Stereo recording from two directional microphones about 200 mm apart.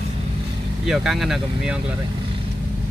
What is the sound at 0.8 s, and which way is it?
Speech, centre (ahead or behind).